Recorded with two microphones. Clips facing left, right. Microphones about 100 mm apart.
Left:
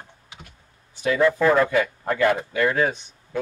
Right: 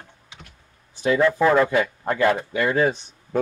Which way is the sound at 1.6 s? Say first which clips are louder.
Right 1 dB; 20° right (ahead or behind).